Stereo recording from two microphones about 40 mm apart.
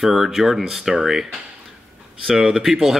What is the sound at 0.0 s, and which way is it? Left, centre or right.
Speech, centre.